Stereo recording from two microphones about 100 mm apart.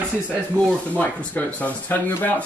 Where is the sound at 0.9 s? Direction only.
15° left (ahead or behind).